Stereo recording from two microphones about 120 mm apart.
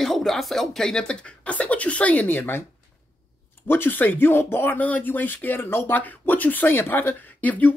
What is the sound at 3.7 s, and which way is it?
Speech, 15° left (ahead or behind).